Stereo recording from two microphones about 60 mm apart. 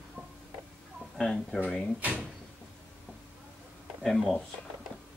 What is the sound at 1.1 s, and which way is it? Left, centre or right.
Speech, centre.